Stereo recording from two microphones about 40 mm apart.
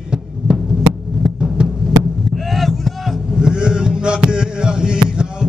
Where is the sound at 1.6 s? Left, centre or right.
Right.